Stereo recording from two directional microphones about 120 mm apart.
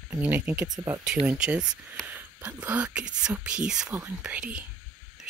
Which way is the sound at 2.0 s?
10° left (ahead or behind).